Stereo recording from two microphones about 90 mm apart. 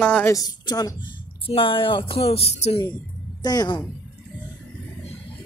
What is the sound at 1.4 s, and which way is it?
Speech, 80° left.